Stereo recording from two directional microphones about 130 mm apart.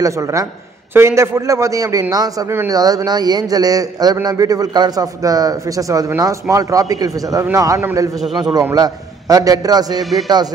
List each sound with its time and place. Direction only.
0.0 s a man's voice: 25° right (ahead or behind)